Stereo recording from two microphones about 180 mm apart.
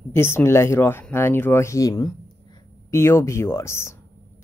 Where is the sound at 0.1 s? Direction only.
15° left (ahead or behind).